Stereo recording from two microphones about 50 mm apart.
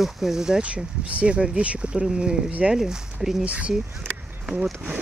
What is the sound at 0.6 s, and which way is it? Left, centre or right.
Speech, right.